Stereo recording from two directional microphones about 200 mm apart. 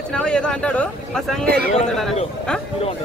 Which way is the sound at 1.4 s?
55° right (ahead or behind).